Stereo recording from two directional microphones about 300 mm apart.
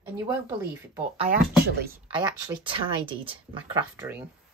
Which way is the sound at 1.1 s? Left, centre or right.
Right.